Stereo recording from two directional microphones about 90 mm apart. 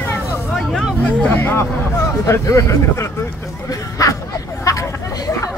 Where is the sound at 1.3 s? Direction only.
20° left (ahead or behind).